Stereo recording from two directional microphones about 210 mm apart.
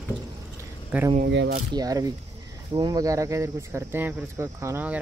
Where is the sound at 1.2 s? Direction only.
55° right (ahead or behind).